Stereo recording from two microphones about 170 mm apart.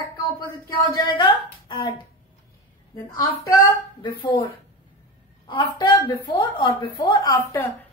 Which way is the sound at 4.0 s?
30° left (ahead or behind).